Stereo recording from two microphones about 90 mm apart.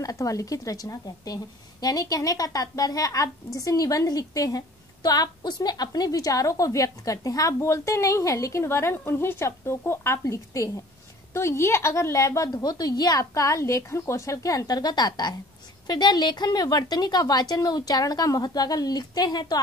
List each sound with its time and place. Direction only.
0.0 s a woman's voice: 40° left (ahead or behind)